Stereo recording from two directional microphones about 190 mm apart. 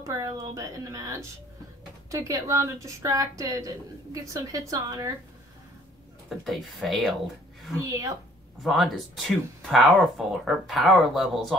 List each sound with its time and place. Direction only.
0.0 s a woman's voice: 15° right (ahead or behind)
6.2 s speech: centre (ahead or behind)
8.6 s speech: centre (ahead or behind)